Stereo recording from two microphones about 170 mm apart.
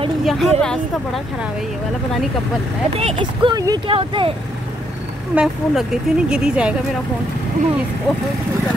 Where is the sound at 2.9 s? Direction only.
35° right (ahead or behind).